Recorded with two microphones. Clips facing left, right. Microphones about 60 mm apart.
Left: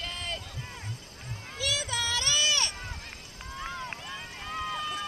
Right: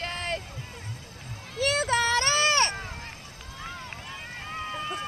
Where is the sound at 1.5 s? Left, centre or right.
Right.